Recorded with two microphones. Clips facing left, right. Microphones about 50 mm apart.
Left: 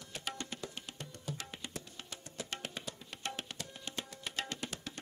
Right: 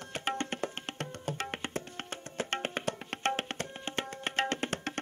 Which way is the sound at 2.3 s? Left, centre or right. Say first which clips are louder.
Right 9 dB; right.